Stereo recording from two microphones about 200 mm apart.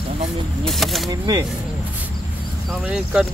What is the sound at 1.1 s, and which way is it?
Speech, 20° right (ahead or behind).